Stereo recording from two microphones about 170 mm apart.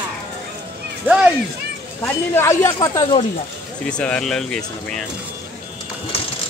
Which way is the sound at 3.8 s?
5° left (ahead or behind).